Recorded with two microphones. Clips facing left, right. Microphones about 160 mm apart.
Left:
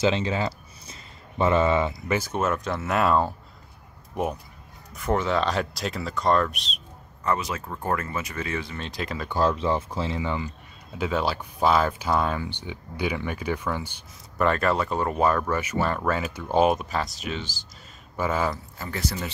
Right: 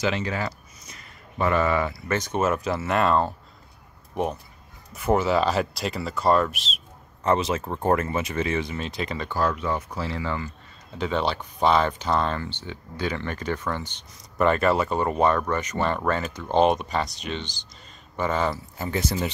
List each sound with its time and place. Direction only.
0.0 s speech: 25° left (ahead or behind)
2.1 s speech: centre (ahead or behind)
4.9 s speech: 5° right (ahead or behind)
7.2 s speech: 25° right (ahead or behind)
8.7 s speech: centre (ahead or behind)
9.3 s speech: 25° left (ahead or behind)
11.0 s speech: 5° left (ahead or behind)
14.4 s speech: centre (ahead or behind)
18.8 s speech: 20° right (ahead or behind)